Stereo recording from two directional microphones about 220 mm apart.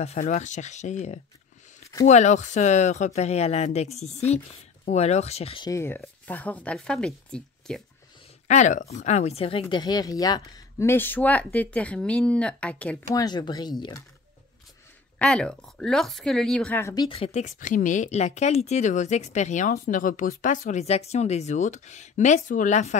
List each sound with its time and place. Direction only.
0.0 s speech: 30° left (ahead or behind); by 7.8 s 5° left (ahead or behind)
8.5 s speech: 35° left (ahead or behind); by 13.2 s 5° left (ahead or behind)
13.2 s speech: 20° left (ahead or behind)
15.1 s speech: 5° left (ahead or behind); by 22.9 s 35° left (ahead or behind)